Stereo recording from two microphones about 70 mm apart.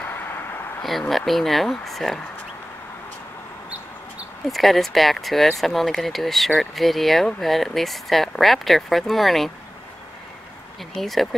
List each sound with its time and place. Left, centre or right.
0.0 s a sound: left
0.8 s speech: centre
4.5 s speech: centre
11.0 s speech: centre